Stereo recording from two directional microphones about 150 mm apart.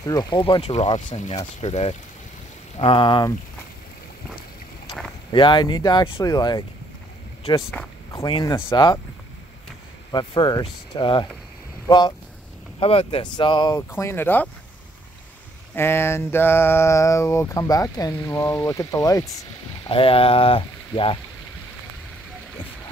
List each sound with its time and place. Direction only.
0.0 s speech: 25° left (ahead or behind); by 2.0 s 45° left (ahead or behind)
2.8 s speech: 35° left (ahead or behind)
5.3 s speech: 30° left (ahead or behind)
6.2 s a sound: 25° left (ahead or behind)
8.3 s speech: 30° left (ahead or behind)
10.1 s a sound: 30° left (ahead or behind)
10.6 s speech: 30° left (ahead or behind)
12.8 s speech: 40° left (ahead or behind)
13.7 s speech: 15° left (ahead or behind)
15.7 s a sound: 15° left (ahead or behind)
19.8 s speech: 35° left (ahead or behind)